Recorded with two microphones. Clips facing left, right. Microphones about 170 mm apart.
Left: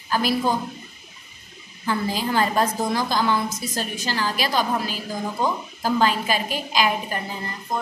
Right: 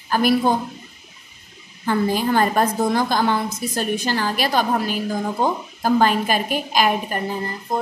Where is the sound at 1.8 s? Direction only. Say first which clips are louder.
Right 5 dB; 55° right (ahead or behind).